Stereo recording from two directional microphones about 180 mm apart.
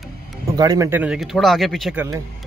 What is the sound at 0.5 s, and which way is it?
Speech, 20° right (ahead or behind).